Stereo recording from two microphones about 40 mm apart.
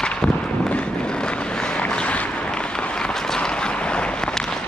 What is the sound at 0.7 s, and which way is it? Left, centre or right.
Vehicle, left.